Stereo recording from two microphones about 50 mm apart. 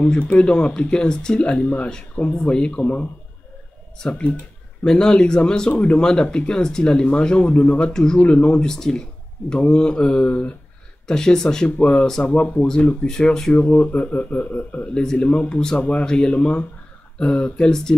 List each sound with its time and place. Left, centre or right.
0.1 s speech: centre
7.9 s speech: centre
8.2 s speech: left
8.5 s speech: centre
11.1 s speech: centre
12.2 s speech: left; by 13.5 s centre
13.5 s speech: left
15.1 s speech: left
15.6 s speech: centre
17.2 s speech: centre